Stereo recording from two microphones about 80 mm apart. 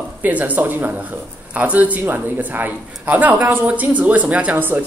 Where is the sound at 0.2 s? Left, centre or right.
Centre.